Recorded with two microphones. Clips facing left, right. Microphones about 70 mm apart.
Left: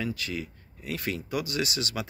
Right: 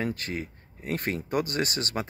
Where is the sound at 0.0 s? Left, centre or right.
Right.